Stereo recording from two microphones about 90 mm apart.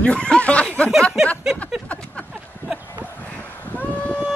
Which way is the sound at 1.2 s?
5° right (ahead or behind).